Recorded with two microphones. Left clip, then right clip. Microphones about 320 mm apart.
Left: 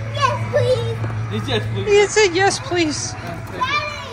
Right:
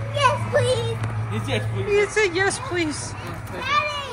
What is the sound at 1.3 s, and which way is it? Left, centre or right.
Speech, centre.